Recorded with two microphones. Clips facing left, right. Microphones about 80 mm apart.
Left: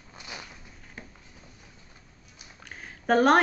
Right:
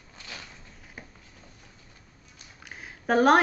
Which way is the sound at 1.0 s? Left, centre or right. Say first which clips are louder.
Left 1 dB; centre.